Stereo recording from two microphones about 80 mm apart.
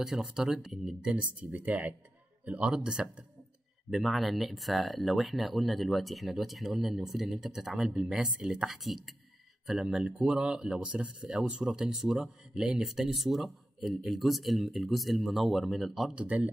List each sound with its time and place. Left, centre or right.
0.0 s speech: centre
1.1 s speech: centre
16.2 s speech: centre